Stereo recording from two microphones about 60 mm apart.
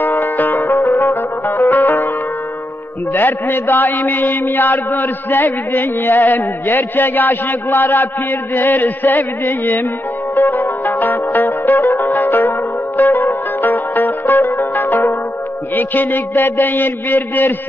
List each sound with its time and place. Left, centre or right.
0.0 s music: left
3.1 s mantra: left
10.3 s zither: left
15.7 s mantra: left